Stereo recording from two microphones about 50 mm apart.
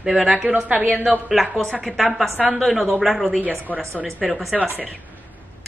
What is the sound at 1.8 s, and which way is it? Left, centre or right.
A woman's voice, centre.